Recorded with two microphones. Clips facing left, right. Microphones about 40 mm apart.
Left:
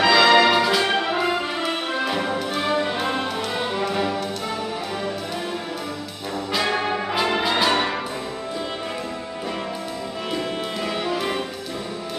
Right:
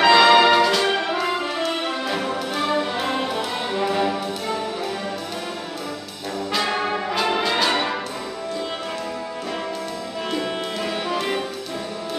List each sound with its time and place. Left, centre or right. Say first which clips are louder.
0.0 s music: right 2 dB; centre
0.9 s music: left 1 dB; centre
1.2 s brass instrument: even; centre
2.3 s music: even; centre
6.5 s brass instrument: even; centre